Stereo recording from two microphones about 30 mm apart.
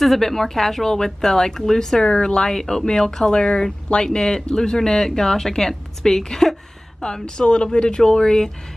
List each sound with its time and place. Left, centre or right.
0.2 s speech: centre
2.0 s speech: left
3.3 s speech: left; by 6.5 s centre
7.2 s speech: left